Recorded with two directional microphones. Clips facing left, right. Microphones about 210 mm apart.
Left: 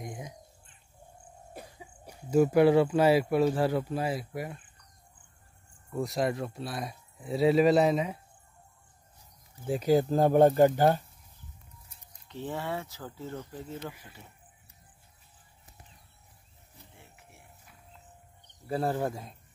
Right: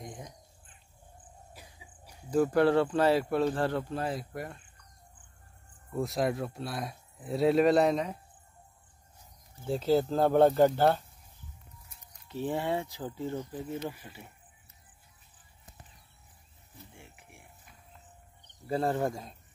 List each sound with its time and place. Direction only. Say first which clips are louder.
0.0 s crow: left 3 dB; 10° left (ahead or behind)
1.5 s cough: left 8 dB; 55° left (ahead or behind)
2.3 s speech: left 3 dB; 10° left (ahead or behind)
5.9 s speech: even; centre (ahead or behind)
9.7 s speech: left 2 dB; 10° left (ahead or behind)
12.3 s speech: right 4 dB; 10° right (ahead or behind)
17.0 s music: right 2 dB; 15° right (ahead or behind)
18.7 s speech: right 1 dB; 5° left (ahead or behind)